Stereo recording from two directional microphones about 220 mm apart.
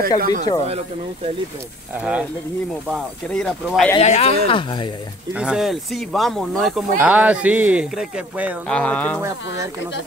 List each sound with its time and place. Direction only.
0.2 s speech: 35° right (ahead or behind)
2.0 s speech: 5° right (ahead or behind)
4.0 s speech: 30° left (ahead or behind)
5.3 s speech: 5° right (ahead or behind)